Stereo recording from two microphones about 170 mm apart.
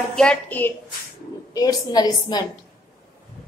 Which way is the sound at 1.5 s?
20° left (ahead or behind).